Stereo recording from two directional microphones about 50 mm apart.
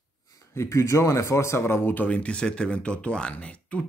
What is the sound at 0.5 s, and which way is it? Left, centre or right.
Speech, left.